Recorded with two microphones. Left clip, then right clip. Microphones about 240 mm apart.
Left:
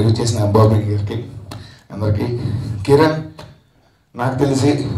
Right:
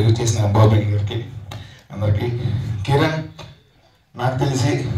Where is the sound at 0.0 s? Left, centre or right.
Left.